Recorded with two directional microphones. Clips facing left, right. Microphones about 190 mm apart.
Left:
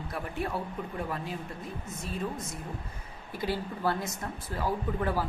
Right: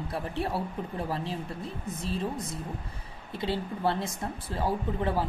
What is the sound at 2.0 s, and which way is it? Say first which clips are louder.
Speech: right 3 dB; 30° right (ahead or behind).